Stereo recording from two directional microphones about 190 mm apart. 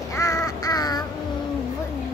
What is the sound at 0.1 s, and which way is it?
Crow, 15° left (ahead or behind).